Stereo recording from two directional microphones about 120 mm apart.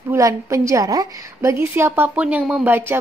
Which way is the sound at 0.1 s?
25° right (ahead or behind).